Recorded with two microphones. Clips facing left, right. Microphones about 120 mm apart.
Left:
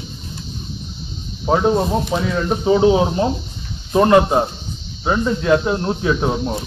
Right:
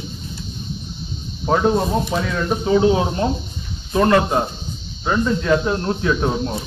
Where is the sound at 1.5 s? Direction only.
10° left (ahead or behind).